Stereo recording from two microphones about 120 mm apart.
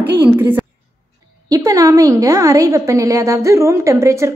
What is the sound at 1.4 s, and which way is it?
A woman's voice, 30° right (ahead or behind).